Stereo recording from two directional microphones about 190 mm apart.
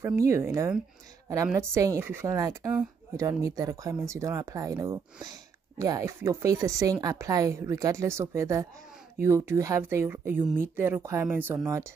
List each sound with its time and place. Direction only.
0.0 s speech: 15° right (ahead or behind)